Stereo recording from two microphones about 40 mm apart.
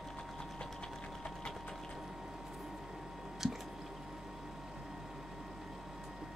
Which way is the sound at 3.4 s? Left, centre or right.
Centre.